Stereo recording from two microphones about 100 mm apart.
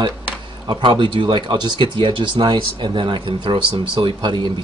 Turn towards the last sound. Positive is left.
turn(degrees=-55)  # may be behind; listen again after turning